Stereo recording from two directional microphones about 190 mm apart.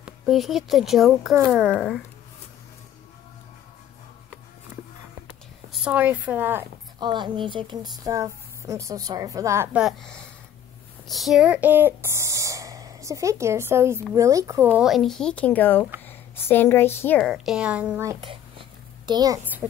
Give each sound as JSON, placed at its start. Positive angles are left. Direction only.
{"t": 0.0, "sound": "speech", "side_deg": 0}
{"t": 5.7, "sound": "a woman's voice", "side_deg": -10}
{"t": 7.0, "sound": "a woman's voice", "side_deg": -25}
{"t": 18.2, "sound": "a sound", "side_deg": -25}